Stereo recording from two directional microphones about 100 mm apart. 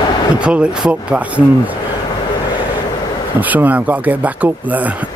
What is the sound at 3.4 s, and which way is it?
Speech, 15° right (ahead or behind).